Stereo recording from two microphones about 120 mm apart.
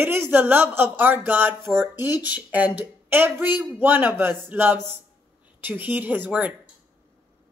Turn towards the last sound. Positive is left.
turn(degrees=-15)  # may be behind; listen again after turning